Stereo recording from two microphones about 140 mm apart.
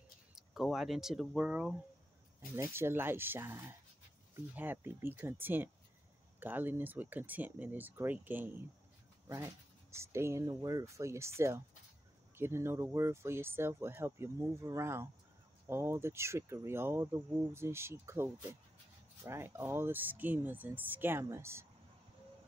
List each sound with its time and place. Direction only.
0.4 s speech: centre (ahead or behind)
2.5 s speech: 20° right (ahead or behind)